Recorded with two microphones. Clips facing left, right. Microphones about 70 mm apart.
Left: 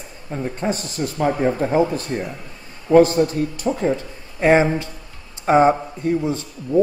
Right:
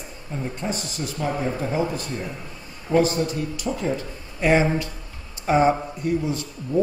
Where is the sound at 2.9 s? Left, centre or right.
Left.